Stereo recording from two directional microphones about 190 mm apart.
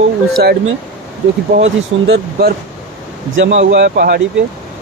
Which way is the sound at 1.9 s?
35° right (ahead or behind).